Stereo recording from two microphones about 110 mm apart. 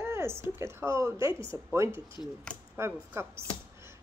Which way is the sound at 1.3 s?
50° left (ahead or behind).